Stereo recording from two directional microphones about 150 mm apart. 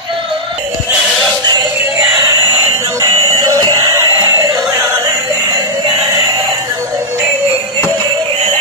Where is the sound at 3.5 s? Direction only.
25° right (ahead or behind).